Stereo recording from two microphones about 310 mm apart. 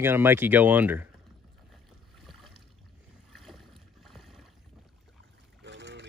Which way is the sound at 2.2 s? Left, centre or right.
Centre.